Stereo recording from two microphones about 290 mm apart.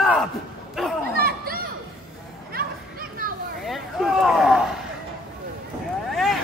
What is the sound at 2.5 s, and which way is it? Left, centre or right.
Chatter, right.